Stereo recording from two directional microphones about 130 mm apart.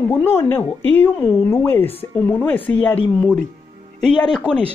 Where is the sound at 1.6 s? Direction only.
15° left (ahead or behind).